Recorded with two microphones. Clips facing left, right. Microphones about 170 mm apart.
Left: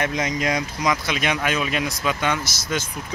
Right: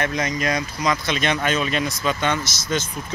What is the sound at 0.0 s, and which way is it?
Speech, 20° left (ahead or behind).